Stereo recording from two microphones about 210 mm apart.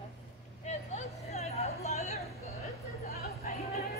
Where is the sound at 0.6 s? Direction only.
35° left (ahead or behind).